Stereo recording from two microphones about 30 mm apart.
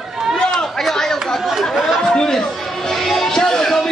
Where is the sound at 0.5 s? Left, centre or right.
Centre.